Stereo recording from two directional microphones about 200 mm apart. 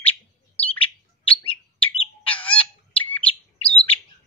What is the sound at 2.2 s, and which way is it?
Bird, 5° left (ahead or behind).